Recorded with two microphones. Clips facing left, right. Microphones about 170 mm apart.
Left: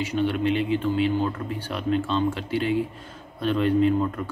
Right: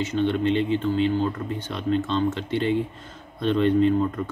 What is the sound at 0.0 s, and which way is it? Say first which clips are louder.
Speech: right 1 dB; 10° left (ahead or behind).